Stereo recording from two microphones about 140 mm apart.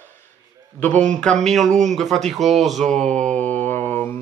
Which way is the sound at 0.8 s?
10° left (ahead or behind).